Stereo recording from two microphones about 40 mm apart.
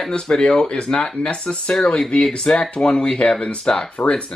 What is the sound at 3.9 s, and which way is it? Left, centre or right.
Speech, left.